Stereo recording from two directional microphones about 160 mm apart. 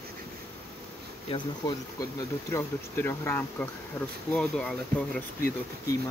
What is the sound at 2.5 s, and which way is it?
Speech, 15° left (ahead or behind).